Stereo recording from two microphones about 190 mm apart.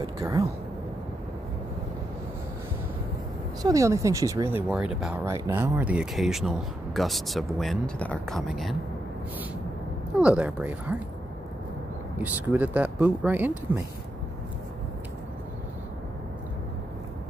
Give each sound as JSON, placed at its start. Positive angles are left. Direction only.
{"t": 0.0, "sound": "speech", "side_deg": -20}
{"t": 3.6, "sound": "speech", "side_deg": -15}
{"t": 10.1, "sound": "speech", "side_deg": -5}
{"t": 12.2, "sound": "speech", "side_deg": -10}